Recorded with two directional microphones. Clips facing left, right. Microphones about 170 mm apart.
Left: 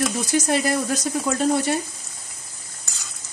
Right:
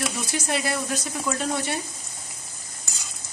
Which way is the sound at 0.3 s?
40° left (ahead or behind).